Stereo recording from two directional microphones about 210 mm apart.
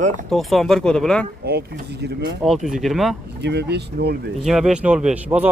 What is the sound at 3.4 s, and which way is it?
Speech, 55° right (ahead or behind).